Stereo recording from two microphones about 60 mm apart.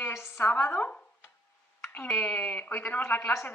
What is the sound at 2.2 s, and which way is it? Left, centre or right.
Speech, left.